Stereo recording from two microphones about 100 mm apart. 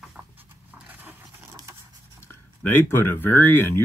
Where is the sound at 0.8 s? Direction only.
15° right (ahead or behind).